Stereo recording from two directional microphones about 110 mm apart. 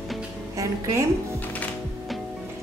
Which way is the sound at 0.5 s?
30° right (ahead or behind).